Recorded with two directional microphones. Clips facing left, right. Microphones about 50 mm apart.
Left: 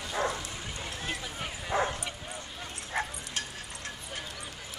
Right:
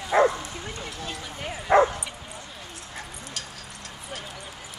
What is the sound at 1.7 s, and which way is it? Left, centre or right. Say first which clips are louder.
Bow-wow: right 11 dB; right.